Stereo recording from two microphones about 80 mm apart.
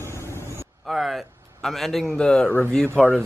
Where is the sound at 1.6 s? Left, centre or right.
Centre.